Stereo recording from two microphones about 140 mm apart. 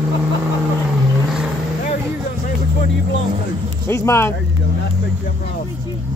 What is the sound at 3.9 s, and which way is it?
Music, 20° left (ahead or behind).